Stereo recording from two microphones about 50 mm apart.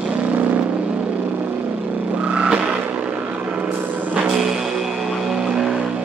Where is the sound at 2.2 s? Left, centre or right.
Right.